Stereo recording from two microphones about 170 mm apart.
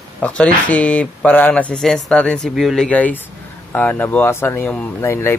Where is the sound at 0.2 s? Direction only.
5° left (ahead or behind).